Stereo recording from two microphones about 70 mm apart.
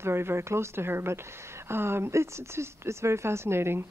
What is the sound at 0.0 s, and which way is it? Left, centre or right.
Speech, right.